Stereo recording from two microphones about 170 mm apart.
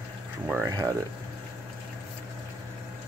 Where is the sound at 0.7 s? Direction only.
25° right (ahead or behind).